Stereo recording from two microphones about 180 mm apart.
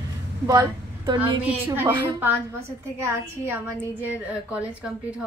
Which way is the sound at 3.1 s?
10° right (ahead or behind).